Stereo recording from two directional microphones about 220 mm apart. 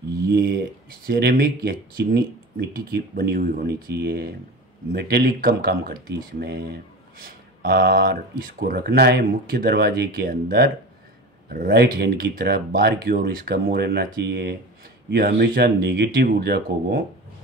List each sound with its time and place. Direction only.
0.3 s speech: 45° right (ahead or behind)